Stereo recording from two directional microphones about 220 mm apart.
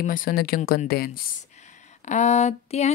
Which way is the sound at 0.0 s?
40° left (ahead or behind).